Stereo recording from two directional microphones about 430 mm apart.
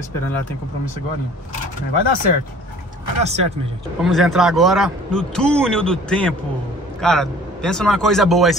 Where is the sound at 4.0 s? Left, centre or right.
Centre.